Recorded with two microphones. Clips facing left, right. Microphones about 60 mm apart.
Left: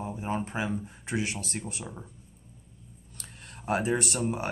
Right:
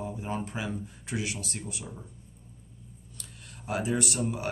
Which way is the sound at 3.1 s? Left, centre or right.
Left.